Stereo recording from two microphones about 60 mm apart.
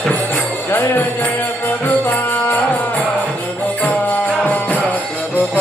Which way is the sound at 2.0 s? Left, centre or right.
Left.